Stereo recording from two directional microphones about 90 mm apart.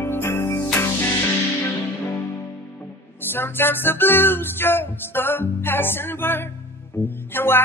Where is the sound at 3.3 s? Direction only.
25° left (ahead or behind).